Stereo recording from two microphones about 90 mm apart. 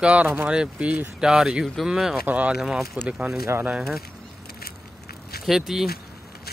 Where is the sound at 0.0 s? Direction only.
15° right (ahead or behind).